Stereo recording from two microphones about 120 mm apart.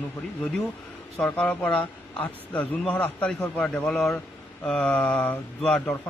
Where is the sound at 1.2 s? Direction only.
10° left (ahead or behind).